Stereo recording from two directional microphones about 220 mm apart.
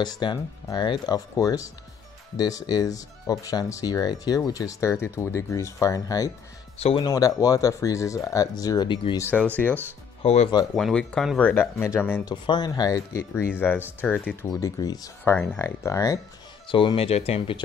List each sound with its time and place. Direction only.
0.0 s speech: 20° left (ahead or behind)
10.2 s speech: 30° left (ahead or behind)
10.8 s speech: 5° left (ahead or behind)
14.0 s speech: centre (ahead or behind)
14.6 s speech: 15° left (ahead or behind)